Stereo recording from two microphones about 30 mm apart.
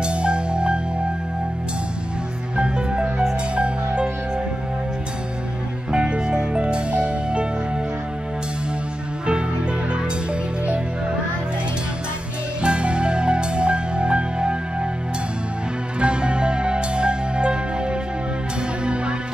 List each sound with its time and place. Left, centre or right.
0.0 s music: right
2.5 s music: right
5.9 s music: right
12.6 s music: right
16.0 s music: right